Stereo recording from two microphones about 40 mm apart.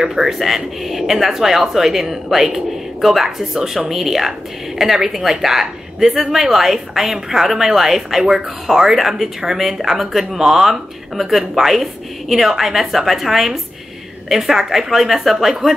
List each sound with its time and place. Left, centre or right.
0.0 s speech: centre